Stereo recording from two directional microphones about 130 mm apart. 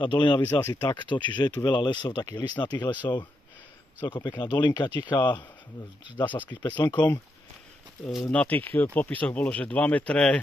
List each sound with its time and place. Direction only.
0.0 s speech: 40° left (ahead or behind)
6.1 s speech: 15° left (ahead or behind)
6.7 s speech: 25° left (ahead or behind)
8.1 s speech: 5° left (ahead or behind)